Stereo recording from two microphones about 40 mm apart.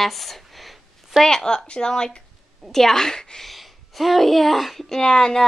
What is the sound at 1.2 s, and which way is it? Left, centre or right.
A woman's voice, centre.